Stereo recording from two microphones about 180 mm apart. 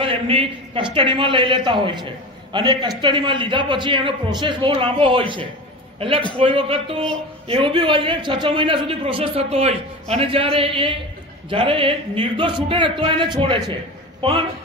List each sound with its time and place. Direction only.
0.0 s a man's voice: 30° right (ahead or behind)